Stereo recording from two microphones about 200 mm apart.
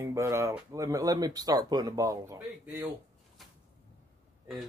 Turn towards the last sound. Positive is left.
turn(degrees=0)  # may be behind; listen again after turning